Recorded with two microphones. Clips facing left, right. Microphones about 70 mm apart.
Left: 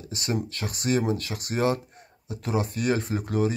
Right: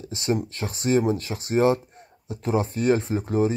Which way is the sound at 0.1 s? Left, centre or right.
Right.